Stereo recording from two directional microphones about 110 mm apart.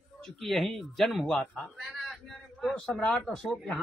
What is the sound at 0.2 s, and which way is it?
A man's voice, centre (ahead or behind).